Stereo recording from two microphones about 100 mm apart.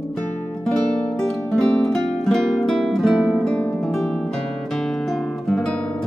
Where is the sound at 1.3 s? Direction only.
5° left (ahead or behind).